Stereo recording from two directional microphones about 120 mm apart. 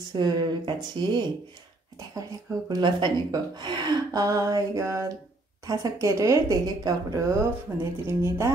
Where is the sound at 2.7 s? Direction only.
40° right (ahead or behind).